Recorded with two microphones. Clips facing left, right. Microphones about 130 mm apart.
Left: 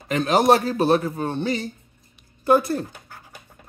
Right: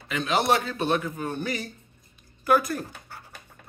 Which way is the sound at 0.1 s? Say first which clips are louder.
Left 6 dB; 40° left (ahead or behind).